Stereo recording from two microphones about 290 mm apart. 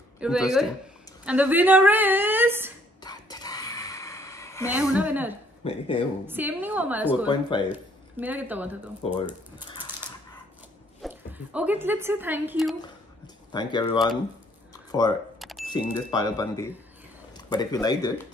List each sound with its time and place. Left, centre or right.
0.2 s a woman's voice: centre
3.0 s whispering: centre
4.6 s a woman's voice: centre
5.6 s speech: centre
6.2 s a woman's voice: centre
7.2 s speech: centre
7.7 s speech: centre
11.0 s speech: centre
13.5 s speech: centre
14.7 s a sound: centre
15.3 s a sound: centre
15.7 s speech: centre